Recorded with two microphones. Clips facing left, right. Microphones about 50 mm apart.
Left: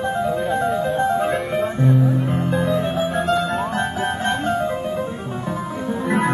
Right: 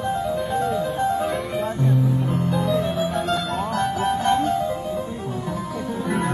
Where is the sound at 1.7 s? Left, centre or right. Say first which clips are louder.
Left 4 dB; left.